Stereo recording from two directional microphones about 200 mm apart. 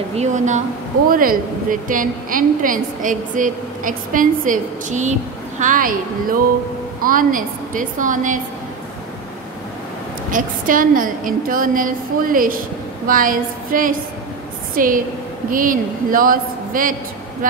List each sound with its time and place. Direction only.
0.1 s a woman's voice: 35° right (ahead or behind)
10.3 s a woman's voice: 40° right (ahead or behind)